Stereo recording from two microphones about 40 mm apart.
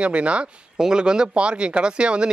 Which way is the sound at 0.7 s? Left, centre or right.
Centre.